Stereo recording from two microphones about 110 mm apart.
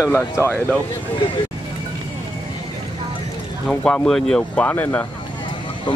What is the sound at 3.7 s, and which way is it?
Speech, 10° left (ahead or behind).